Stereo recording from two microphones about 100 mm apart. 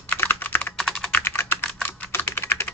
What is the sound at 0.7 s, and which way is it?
Typing, 5° left (ahead or behind).